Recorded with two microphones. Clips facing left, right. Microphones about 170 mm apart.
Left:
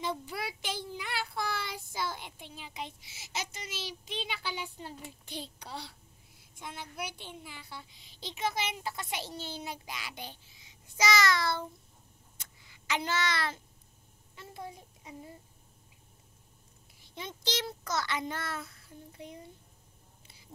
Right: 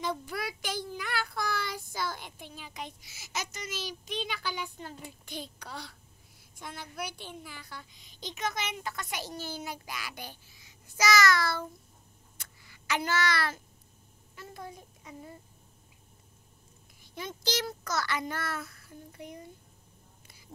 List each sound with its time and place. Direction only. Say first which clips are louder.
0.0 s child singing: right 2 dB; 25° left (ahead or behind)
2.0 s a child's voice: left 1 dB; 25° left (ahead or behind)
12.4 s a sound: right 2 dB; 20° left (ahead or behind)
17.0 s a child's voice: right 3 dB; 25° left (ahead or behind)